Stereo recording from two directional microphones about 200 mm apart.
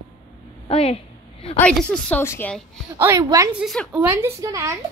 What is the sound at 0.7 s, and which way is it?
Speech, 30° left (ahead or behind).